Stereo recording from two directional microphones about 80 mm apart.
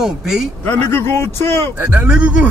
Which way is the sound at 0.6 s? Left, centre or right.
Left.